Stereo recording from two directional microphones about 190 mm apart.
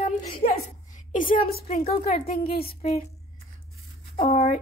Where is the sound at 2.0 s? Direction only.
35° left (ahead or behind).